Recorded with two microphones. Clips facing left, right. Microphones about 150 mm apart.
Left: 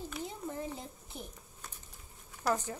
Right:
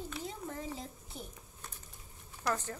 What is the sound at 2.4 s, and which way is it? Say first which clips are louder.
Speech: left 3 dB; 15° left (ahead or behind).